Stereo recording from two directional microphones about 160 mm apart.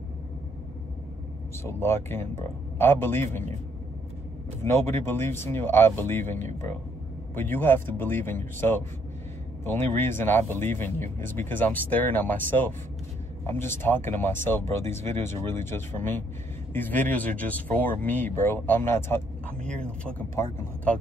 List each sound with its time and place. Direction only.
1.6 s speech: 15° left (ahead or behind)
4.6 s speech: 15° left (ahead or behind)
20.3 s speech: 20° left (ahead or behind)